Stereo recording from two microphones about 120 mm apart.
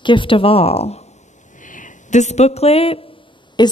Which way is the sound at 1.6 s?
90° left.